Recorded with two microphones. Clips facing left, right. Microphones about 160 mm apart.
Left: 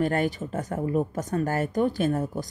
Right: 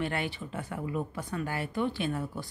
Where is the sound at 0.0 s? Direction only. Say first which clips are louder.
Left 8 dB; 40° left (ahead or behind).